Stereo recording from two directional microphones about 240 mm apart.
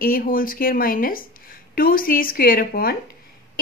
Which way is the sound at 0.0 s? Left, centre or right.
Left.